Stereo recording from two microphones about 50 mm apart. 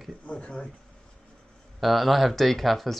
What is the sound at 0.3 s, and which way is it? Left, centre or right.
Speech, left.